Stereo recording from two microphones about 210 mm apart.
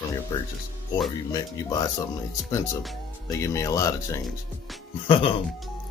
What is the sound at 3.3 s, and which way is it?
Speech, 15° left (ahead or behind).